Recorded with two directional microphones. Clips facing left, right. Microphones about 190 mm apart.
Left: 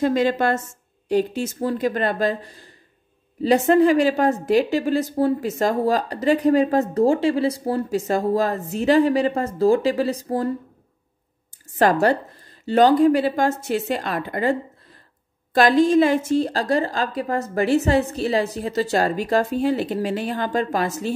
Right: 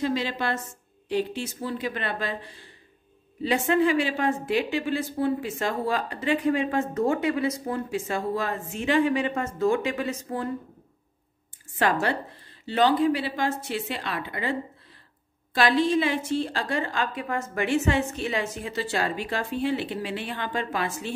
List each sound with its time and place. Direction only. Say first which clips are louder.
0.0 s a woman's voice: left 8 dB; 50° left (ahead or behind)
11.8 s a woman's voice: left 7 dB; 40° left (ahead or behind)